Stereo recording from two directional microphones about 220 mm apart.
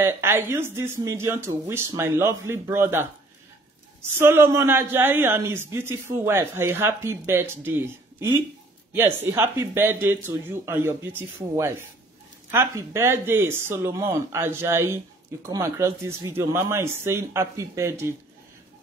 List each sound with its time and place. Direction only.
0.0 s a woman's voice: 10° right (ahead or behind)
4.2 s a woman's voice: 10° right (ahead or behind)